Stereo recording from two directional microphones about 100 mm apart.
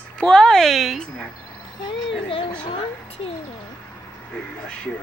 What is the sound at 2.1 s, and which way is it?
Speech, 60° left (ahead or behind).